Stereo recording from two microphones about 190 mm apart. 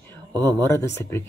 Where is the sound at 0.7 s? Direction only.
15° left (ahead or behind).